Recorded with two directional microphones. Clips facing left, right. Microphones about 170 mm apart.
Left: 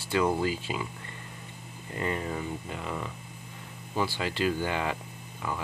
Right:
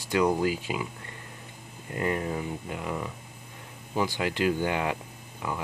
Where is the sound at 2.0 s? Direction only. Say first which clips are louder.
Right 3 dB; 10° right (ahead or behind).